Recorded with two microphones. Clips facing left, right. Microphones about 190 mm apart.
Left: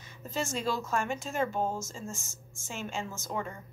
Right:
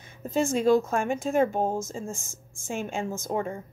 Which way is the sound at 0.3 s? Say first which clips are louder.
Right 11 dB; 50° right (ahead or behind).